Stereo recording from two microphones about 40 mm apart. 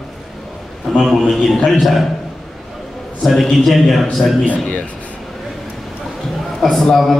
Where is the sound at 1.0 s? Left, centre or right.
Centre.